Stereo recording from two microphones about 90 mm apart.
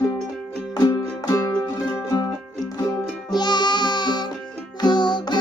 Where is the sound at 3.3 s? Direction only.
55° left (ahead or behind).